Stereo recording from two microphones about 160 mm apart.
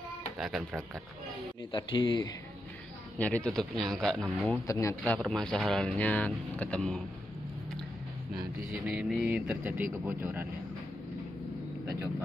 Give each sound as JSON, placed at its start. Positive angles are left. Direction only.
{"t": 0.4, "sound": "speech", "side_deg": 0}
{"t": 1.7, "sound": "speech", "side_deg": 30}
{"t": 3.2, "sound": "speech", "side_deg": 10}
{"t": 4.6, "sound": "speech", "side_deg": 20}
{"t": 5.1, "sound": "speech", "side_deg": 5}
{"t": 8.8, "sound": "a sound", "side_deg": -5}